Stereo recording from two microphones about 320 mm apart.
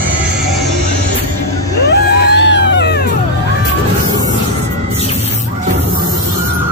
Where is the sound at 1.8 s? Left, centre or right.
Left.